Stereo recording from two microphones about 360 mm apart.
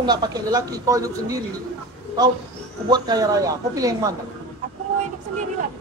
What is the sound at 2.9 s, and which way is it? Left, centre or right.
Speech, centre.